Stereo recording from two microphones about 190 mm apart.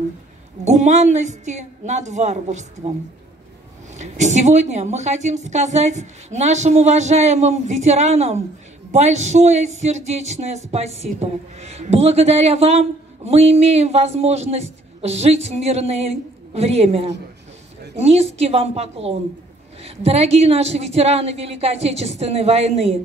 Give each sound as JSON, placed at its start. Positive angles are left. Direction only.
{"t": 0.7, "sound": "speech", "side_deg": -40}
{"t": 3.9, "sound": "speech", "side_deg": -40}